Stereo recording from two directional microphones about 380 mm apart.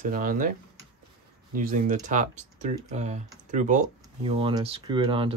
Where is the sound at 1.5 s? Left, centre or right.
Right.